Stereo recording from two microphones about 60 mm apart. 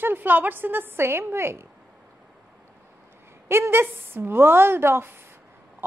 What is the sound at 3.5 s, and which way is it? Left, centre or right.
A woman's voice, right.